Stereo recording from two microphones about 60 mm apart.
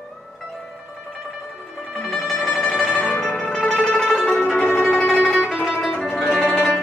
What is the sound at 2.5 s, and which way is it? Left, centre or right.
Music, left.